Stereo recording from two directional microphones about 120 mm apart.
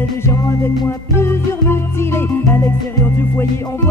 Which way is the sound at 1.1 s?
20° left (ahead or behind).